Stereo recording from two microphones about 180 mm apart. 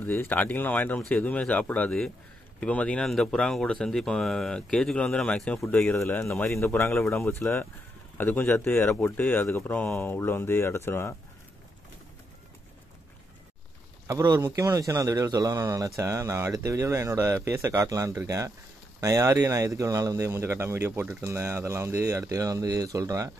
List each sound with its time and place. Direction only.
0.0 s speech: 10° left (ahead or behind)
14.0 s a man's voice: 20° right (ahead or behind)